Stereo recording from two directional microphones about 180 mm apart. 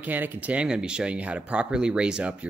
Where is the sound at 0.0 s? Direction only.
10° right (ahead or behind).